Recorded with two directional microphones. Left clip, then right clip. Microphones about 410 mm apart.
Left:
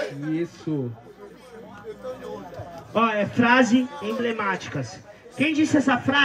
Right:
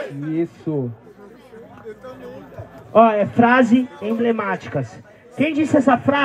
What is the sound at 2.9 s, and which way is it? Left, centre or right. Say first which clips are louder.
A man's voice: right 9 dB; centre.